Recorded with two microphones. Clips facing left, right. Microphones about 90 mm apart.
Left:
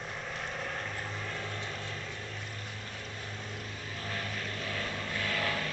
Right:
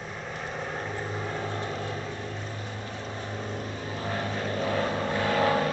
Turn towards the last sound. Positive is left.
turn(degrees=-30)  # may be behind; listen again after turning